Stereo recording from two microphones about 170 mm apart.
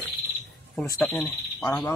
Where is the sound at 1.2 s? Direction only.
20° left (ahead or behind).